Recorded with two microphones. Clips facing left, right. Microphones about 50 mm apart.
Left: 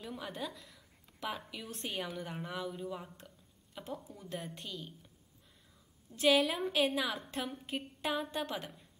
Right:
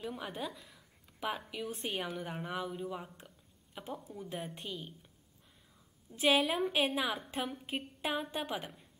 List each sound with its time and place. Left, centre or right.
0.0 s a woman's voice: centre
3.2 s a sound: centre
4.1 s a woman's voice: centre
6.1 s a woman's voice: centre